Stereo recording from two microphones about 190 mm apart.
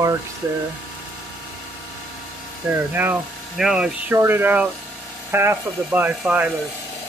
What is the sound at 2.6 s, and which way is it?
Speech, 10° right (ahead or behind).